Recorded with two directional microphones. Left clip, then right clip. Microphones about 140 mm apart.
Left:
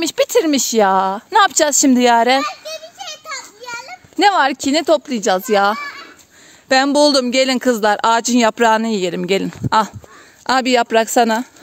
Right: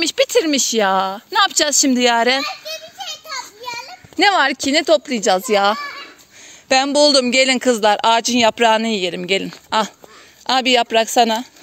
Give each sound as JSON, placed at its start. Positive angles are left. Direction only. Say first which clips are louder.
{"t": 0.0, "sound": "speech", "louder": "left 1 dB", "side_deg": 40}
{"t": 2.4, "sound": "children playing", "louder": "left 1 dB", "side_deg": 20}
{"t": 4.3, "sound": "a woman's voice", "louder": "left 1 dB", "side_deg": 35}